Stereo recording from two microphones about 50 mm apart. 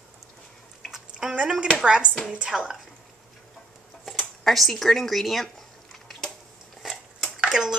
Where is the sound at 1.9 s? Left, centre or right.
Right.